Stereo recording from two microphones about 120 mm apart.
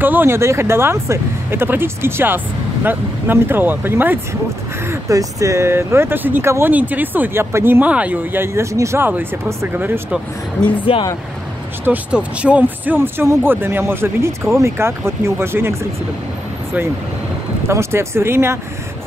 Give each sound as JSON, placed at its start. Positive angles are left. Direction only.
{"t": 0.0, "sound": "speech", "side_deg": -15}
{"t": 10.9, "sound": "speech", "side_deg": 50}
{"t": 11.8, "sound": "speech", "side_deg": -10}
{"t": 17.6, "sound": "speech", "side_deg": -20}